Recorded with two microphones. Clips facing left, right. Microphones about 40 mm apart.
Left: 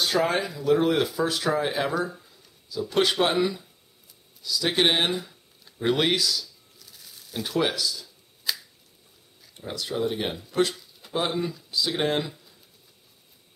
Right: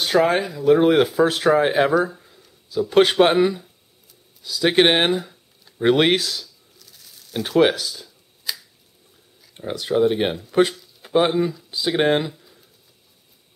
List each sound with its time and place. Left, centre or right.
0.0 s speech: centre
0.7 s speech: right
2.0 s a sound: right
2.9 s speech: right
5.1 s speech: centre
5.8 s speech: right
6.8 s a sound: centre
7.4 s speech: right
8.5 s finger snapping: centre
9.5 s speech: right